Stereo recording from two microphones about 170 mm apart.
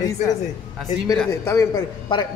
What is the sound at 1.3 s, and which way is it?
A man's voice, 20° left (ahead or behind).